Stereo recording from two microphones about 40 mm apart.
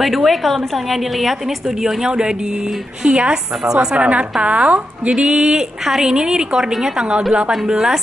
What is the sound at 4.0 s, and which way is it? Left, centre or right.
A woman's voice, right.